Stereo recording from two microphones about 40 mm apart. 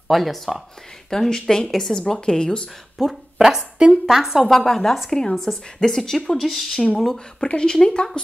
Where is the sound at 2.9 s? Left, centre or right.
Centre.